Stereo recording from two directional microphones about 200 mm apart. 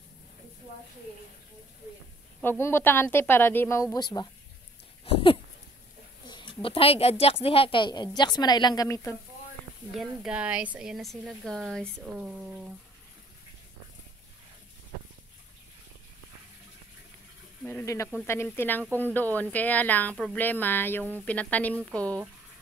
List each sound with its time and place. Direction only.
2.6 s a woman's voice: 10° left (ahead or behind)
5.0 s dog: 25° left (ahead or behind)
6.2 s a woman's voice: 25° left (ahead or behind)
9.9 s speech: 5° right (ahead or behind)
17.6 s a woman's voice: 15° left (ahead or behind)